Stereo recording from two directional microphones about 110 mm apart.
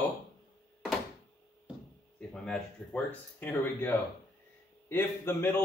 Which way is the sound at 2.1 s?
5° left (ahead or behind).